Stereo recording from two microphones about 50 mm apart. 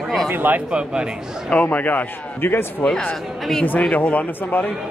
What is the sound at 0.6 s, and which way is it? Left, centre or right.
Speech, centre.